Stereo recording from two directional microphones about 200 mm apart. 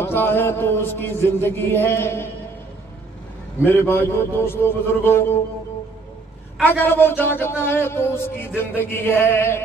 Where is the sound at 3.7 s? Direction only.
10° left (ahead or behind).